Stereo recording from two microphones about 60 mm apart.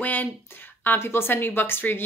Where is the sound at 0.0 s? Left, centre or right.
Left.